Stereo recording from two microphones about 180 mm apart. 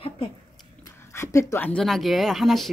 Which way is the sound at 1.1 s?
15° left (ahead or behind).